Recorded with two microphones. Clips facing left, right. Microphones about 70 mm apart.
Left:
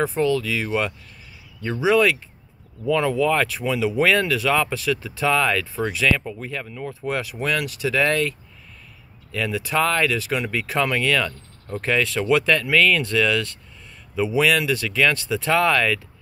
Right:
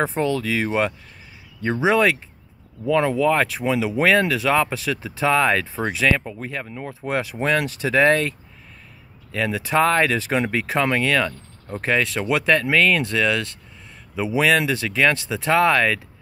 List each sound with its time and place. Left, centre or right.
0.0 s speech: right